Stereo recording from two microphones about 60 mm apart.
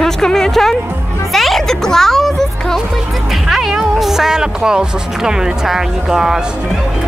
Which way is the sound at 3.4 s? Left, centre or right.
Centre.